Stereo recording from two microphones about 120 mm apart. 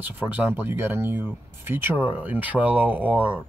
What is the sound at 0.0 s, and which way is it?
Speech, 15° right (ahead or behind).